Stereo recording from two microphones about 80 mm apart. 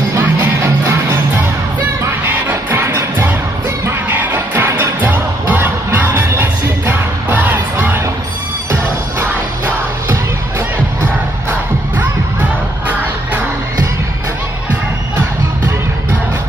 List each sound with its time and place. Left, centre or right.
2.7 s music: right